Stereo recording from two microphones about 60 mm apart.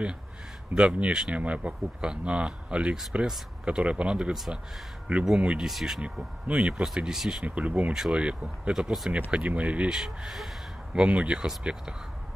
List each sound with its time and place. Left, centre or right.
0.9 s speech: centre
5.7 s speech: centre
5.9 s speech: centre
6.7 s speech: centre
7.4 s speech: right
7.9 s speech: centre
8.7 s speech: centre
9.3 s speech: right
9.8 s speech: centre
11.0 s speech: right